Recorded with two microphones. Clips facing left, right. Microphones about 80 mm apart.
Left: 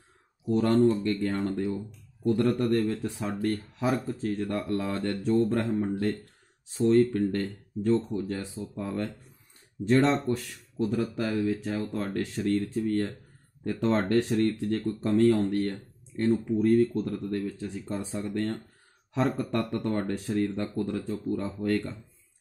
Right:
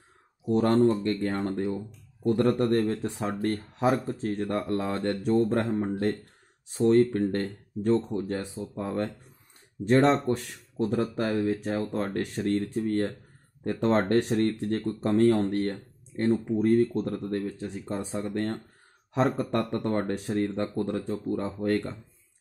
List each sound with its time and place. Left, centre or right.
1.2 s speech: right
9.8 s speech: right
17.6 s speech: right